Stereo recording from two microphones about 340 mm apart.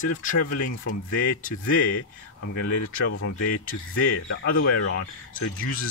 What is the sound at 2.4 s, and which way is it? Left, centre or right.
Speech, left.